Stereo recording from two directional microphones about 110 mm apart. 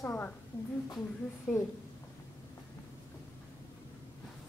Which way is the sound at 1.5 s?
Centre (ahead or behind).